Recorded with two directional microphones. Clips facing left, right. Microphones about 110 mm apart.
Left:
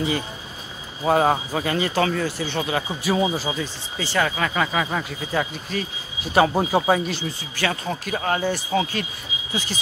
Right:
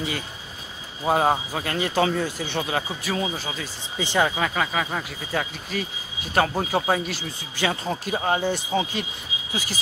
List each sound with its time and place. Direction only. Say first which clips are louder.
1.0 s speech: left 2 dB; 5° right (ahead or behind)
2.0 s speech: left 1 dB; 15° right (ahead or behind)
2.9 s speech: left 5 dB; 10° left (ahead or behind)
4.0 s speech: right 1 dB; 20° right (ahead or behind)
4.4 s speech: left 2 dB; centre (ahead or behind)
7.5 s speech: right 1 dB; 20° right (ahead or behind)